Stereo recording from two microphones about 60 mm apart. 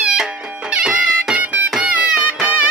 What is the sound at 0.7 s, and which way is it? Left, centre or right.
Music, centre.